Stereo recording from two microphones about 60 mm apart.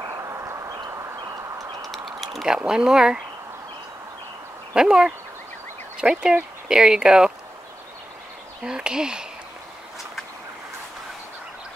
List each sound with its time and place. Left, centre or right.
0.1 s a sound: right
1.9 s typing: centre
2.4 s speech: centre
4.7 s speech: centre
8.6 s speech: centre